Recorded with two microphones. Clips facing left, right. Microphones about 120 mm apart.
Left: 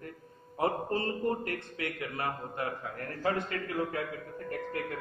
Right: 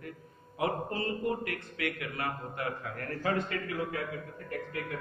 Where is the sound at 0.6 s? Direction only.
35° left (ahead or behind).